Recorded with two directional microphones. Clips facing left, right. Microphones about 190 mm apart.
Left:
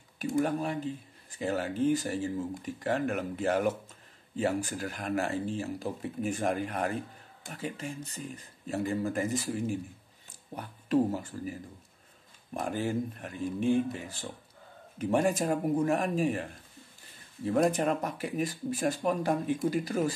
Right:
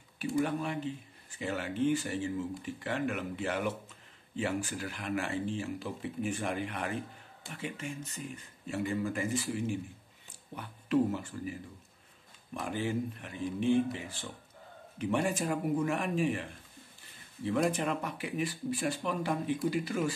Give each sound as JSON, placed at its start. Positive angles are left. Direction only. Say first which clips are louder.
{"t": 0.2, "sound": "speech", "louder": "left 2 dB", "side_deg": 45}
{"t": 12.5, "sound": "speech", "louder": "left 2 dB", "side_deg": 45}
{"t": 17.5, "sound": "speech", "louder": "left 4 dB", "side_deg": 40}